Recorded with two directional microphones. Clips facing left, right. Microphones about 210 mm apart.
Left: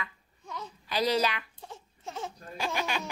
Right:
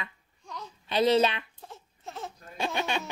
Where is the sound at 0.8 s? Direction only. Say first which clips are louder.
Right 5 dB; 25° right (ahead or behind).